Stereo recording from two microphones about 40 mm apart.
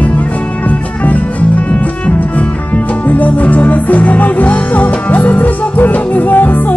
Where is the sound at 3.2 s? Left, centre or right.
Left.